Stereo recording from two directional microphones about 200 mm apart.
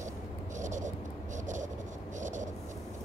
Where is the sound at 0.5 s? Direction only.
40° right (ahead or behind).